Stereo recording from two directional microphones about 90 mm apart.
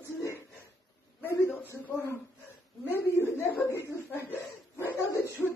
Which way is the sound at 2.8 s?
25° left (ahead or behind).